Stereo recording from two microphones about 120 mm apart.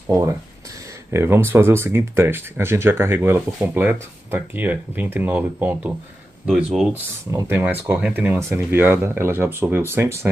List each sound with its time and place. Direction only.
0.0 s a sound: 25° right (ahead or behind)
1.1 s speech: 20° right (ahead or behind); by 6.9 s 5° right (ahead or behind)
7.2 s speech: 25° right (ahead or behind)